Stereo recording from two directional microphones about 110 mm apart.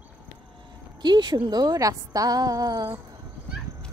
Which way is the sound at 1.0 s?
40° right (ahead or behind).